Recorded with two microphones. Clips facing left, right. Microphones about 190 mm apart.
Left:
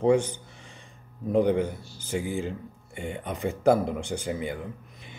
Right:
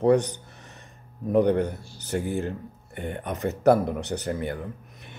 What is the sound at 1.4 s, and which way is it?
Speech, 10° left (ahead or behind).